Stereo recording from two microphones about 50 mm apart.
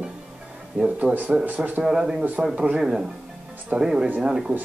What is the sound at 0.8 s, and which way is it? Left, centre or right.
Speech, right.